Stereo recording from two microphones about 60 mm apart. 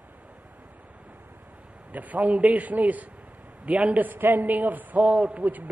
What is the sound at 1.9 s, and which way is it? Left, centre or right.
A man's voice, right.